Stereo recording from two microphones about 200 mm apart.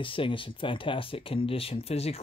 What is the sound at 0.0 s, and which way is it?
Speech, 25° left (ahead or behind).